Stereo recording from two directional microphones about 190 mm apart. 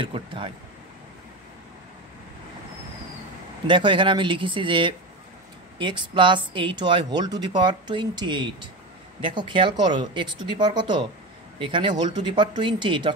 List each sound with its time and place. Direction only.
0.0 s speech: 25° right (ahead or behind)
3.6 s speech: 25° right (ahead or behind)